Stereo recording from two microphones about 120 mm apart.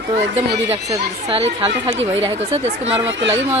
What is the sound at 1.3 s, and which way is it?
Speech, 55° right (ahead or behind).